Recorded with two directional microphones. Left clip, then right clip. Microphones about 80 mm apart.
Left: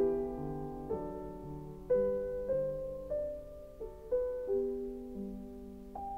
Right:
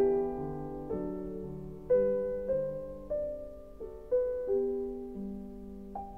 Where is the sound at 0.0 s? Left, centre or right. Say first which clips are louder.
Right 4 dB; centre.